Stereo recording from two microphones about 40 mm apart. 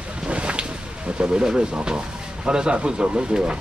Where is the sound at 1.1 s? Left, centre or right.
Right.